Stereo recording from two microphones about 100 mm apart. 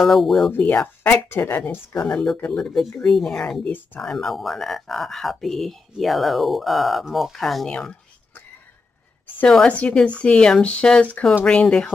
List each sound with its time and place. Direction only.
0.0 s speech: centre (ahead or behind)
0.5 s speech: 20° left (ahead or behind); by 7.9 s 5° left (ahead or behind)
9.5 s speech: 10° left (ahead or behind)